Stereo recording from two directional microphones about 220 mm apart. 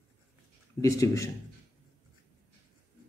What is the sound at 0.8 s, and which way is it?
Speech, 15° left (ahead or behind).